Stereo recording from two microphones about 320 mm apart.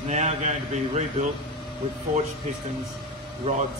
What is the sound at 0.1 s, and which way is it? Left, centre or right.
A man's voice, right.